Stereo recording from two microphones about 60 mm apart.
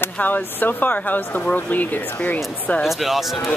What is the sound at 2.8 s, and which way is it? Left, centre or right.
Speech, centre.